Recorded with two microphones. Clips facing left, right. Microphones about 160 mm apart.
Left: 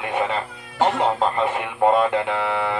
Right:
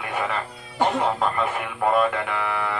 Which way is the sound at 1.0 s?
25° left (ahead or behind).